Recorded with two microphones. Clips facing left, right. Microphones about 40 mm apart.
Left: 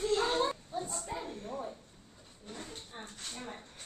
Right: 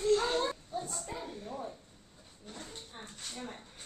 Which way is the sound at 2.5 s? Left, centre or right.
Centre.